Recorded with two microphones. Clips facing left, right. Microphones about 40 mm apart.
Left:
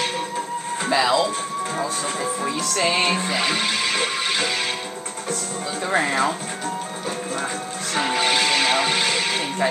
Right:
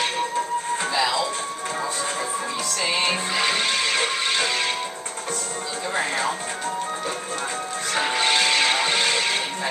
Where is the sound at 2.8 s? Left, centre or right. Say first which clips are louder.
Left 4 dB; left.